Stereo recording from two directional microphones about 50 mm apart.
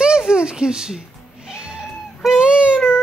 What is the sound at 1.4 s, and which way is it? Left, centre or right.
Cat, centre.